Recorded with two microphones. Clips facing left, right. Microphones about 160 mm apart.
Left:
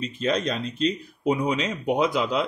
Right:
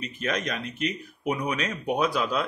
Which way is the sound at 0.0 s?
30° left (ahead or behind).